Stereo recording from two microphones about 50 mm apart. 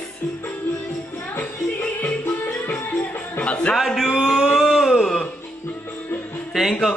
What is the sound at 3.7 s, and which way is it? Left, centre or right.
Speech, centre.